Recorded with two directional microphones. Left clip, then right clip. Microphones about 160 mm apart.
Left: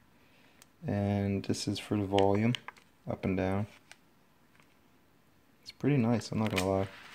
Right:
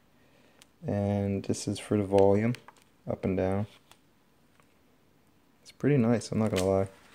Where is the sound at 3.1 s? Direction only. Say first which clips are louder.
Right 3 dB; 10° right (ahead or behind).